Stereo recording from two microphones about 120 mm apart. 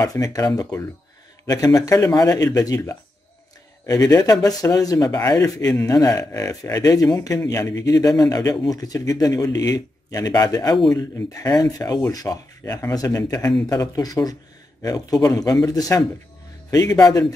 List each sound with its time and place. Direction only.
0.0 s speech: 30° left (ahead or behind)